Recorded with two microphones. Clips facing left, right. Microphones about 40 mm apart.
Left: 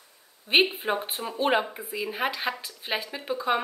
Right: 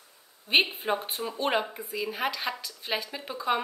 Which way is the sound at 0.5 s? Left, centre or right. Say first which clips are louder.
Left 2 dB; centre.